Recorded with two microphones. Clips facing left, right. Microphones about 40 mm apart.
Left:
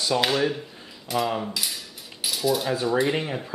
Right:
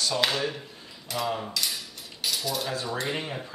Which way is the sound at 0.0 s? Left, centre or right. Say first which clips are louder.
Left 4 dB; centre.